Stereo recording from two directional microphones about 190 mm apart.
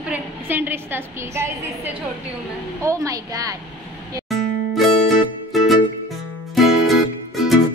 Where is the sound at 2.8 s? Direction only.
15° right (ahead or behind).